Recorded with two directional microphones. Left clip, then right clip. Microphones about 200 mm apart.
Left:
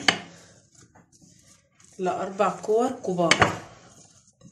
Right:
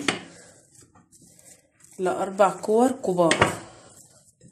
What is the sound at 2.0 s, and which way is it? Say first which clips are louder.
Speech: right 4 dB; 35° right (ahead or behind).